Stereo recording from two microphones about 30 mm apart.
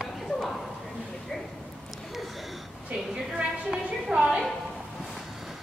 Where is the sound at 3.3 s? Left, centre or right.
Right.